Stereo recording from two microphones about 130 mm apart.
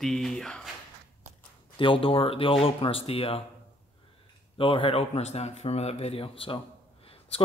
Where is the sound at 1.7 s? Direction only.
40° left (ahead or behind).